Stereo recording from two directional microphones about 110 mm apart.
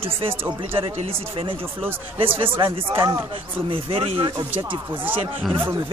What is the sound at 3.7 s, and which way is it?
Speech, 55° right (ahead or behind).